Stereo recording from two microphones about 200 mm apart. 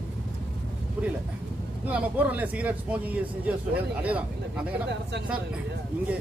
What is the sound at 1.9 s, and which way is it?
Speech, 10° right (ahead or behind).